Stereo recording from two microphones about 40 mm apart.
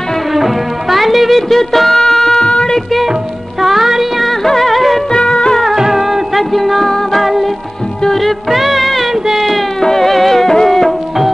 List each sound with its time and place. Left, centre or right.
0.3 s music: centre
2.4 s a sound: centre
3.6 s music: centre
5.1 s music: left
5.8 s music: centre
9.1 s a sound: centre
9.8 s music: centre